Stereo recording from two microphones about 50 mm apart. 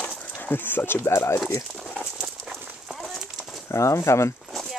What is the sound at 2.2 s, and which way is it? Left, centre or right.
Horse, centre.